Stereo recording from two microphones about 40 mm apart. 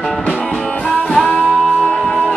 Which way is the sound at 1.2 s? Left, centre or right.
Left.